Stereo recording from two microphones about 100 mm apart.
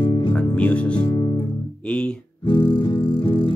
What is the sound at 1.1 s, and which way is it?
Music, 40° left (ahead or behind).